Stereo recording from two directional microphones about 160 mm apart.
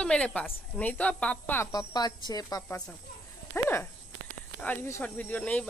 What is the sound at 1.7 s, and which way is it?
Speech, 25° left (ahead or behind).